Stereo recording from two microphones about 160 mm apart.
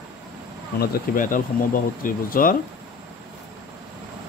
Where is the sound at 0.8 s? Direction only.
60° left (ahead or behind).